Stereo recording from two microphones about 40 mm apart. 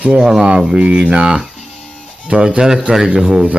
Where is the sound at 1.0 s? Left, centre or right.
Centre.